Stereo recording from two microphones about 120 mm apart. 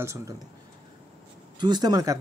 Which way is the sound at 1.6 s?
35° right (ahead or behind).